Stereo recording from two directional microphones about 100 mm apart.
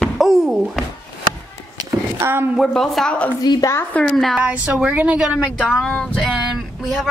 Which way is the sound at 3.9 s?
5° left (ahead or behind).